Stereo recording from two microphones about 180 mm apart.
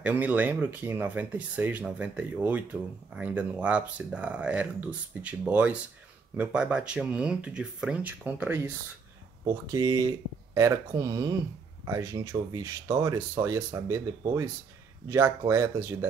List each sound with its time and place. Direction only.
0.0 s speech: 10° right (ahead or behind)
9.4 s speech: 20° right (ahead or behind)